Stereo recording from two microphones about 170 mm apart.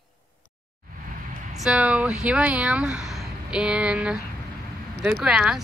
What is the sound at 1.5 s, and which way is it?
Speech, 5° right (ahead or behind).